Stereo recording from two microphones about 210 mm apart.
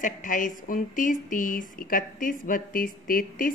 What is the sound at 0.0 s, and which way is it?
A woman's voice, 40° left (ahead or behind).